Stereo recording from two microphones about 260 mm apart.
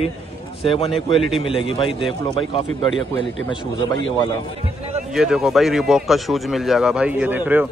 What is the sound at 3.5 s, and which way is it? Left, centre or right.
Speech, centre.